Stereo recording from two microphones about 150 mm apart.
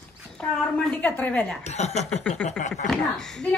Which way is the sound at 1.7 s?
45° left (ahead or behind).